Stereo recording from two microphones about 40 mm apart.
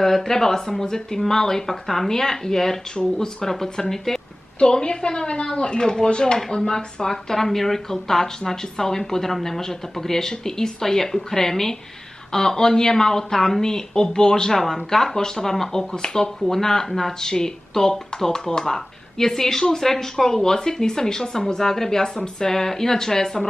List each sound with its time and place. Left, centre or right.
0.0 s a woman's voice: centre
4.6 s speech: left